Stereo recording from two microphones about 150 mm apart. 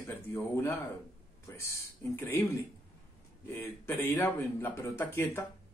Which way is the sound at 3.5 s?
15° left (ahead or behind).